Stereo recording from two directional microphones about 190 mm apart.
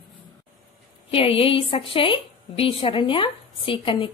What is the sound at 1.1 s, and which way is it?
A woman's voice, 30° left (ahead or behind).